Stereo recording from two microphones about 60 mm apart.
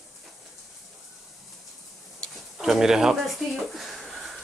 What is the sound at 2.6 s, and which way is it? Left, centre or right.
Speech, centre.